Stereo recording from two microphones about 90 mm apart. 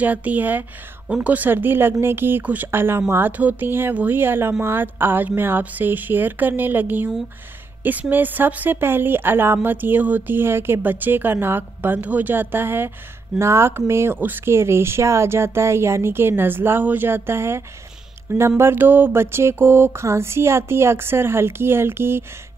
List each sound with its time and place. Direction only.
0.0 s speech: 15° right (ahead or behind)